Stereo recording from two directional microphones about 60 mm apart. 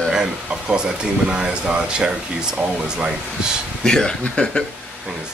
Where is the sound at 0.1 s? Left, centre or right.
Centre.